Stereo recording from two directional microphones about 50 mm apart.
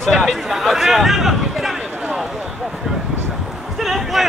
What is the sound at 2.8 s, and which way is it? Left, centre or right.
Vehicle, centre.